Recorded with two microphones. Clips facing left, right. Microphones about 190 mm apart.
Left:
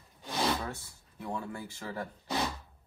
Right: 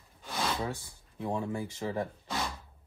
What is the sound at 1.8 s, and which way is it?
Speech, 20° right (ahead or behind).